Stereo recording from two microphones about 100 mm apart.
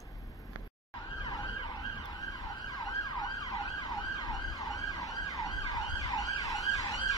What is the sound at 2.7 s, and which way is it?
Emergency vehicle, 40° left (ahead or behind).